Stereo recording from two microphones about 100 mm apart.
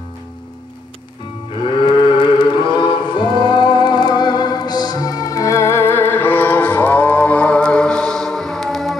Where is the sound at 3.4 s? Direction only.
50° left (ahead or behind).